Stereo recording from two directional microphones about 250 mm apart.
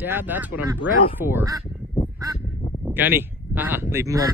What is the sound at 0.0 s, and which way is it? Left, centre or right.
A man's voice, centre.